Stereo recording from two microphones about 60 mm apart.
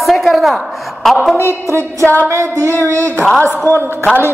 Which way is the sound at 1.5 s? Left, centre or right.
Right.